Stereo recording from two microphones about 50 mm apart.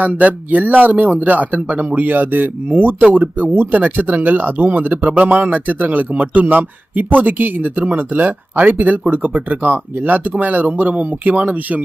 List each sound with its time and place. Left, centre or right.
0.0 s speech: right